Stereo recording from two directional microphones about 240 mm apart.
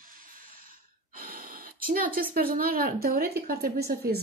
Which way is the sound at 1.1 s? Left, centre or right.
Right.